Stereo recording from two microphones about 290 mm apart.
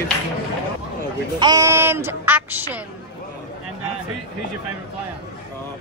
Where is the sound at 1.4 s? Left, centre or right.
Centre.